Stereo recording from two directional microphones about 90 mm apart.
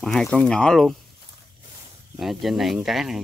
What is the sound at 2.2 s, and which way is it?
Speech, centre (ahead or behind).